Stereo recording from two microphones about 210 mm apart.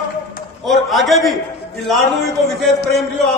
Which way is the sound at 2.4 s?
Centre (ahead or behind).